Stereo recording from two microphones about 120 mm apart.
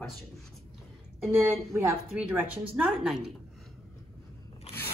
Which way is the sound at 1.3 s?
20° right (ahead or behind).